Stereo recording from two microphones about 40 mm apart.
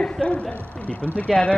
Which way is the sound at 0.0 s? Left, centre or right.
Centre.